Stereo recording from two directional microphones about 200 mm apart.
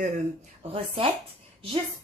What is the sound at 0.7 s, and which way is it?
Speech, 30° right (ahead or behind).